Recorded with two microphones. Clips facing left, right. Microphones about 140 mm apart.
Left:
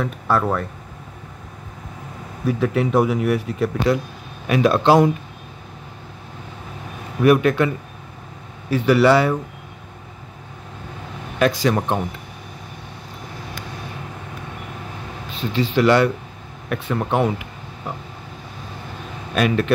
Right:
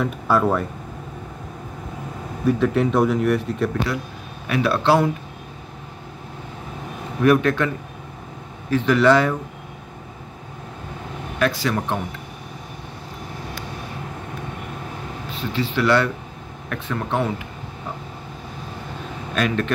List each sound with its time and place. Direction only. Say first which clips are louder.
0.0 s speech: right 1 dB; centre (ahead or behind)
2.4 s speech: right 1 dB; 5° left (ahead or behind)
4.5 s speech: left 3 dB; 15° left (ahead or behind)
7.2 s speech: left 2 dB; 10° left (ahead or behind)
11.3 s speech: left 4 dB; 20° left (ahead or behind)
15.5 s speech: left 3 dB; 15° left (ahead or behind)
19.3 s speech: left 3 dB; 10° left (ahead or behind)